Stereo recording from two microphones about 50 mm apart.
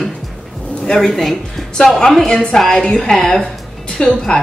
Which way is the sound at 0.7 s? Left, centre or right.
Centre.